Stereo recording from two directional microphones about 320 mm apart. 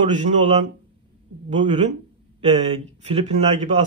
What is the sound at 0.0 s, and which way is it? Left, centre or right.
Speech, right.